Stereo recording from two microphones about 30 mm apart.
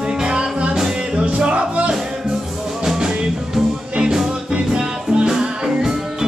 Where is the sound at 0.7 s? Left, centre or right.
Centre.